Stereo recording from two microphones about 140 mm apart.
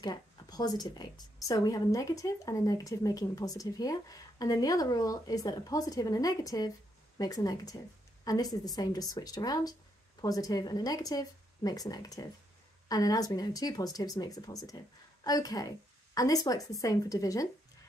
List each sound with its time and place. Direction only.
0.0 s a woman's voice: 30° left (ahead or behind)